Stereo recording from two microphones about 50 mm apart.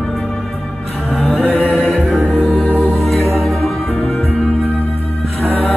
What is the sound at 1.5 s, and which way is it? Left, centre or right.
Music, left.